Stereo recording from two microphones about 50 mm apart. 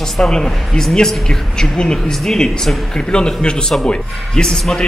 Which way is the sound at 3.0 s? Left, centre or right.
Centre.